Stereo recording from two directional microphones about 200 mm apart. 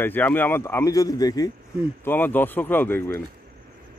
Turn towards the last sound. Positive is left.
turn(degrees=10)  # may be behind; listen again after turning